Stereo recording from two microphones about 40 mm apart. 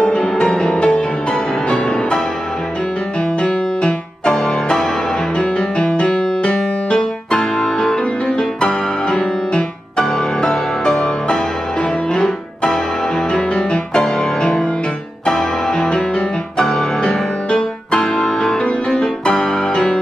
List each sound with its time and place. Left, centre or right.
0.0 s music: left
3.4 s music: left
7.0 s music: centre
17.9 s music: centre